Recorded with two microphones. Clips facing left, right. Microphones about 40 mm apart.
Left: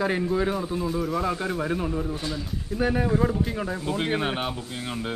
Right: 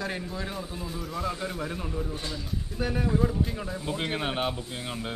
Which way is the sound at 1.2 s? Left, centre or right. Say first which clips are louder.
Left 5 dB; left.